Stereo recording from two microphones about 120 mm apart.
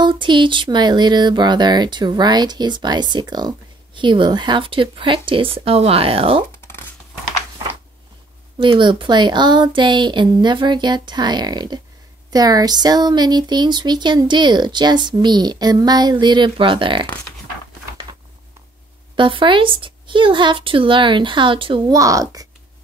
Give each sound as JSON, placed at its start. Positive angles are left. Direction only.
{"t": 0.0, "sound": "speech", "side_deg": -40}
{"t": 8.5, "sound": "speech", "side_deg": -40}
{"t": 19.1, "sound": "speech", "side_deg": -45}
{"t": 21.9, "sound": "speech", "side_deg": -30}